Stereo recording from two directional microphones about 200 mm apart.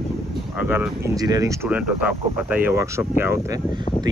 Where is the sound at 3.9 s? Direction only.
25° left (ahead or behind).